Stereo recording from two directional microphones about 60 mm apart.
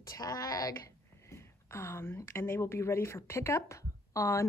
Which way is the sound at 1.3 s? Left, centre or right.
Left.